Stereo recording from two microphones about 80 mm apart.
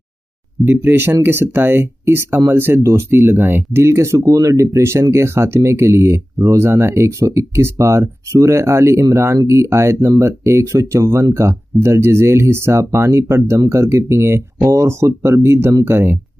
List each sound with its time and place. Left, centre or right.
0.7 s speech: right